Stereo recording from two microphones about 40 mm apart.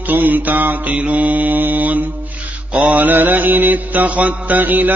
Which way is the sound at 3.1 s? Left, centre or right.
Right.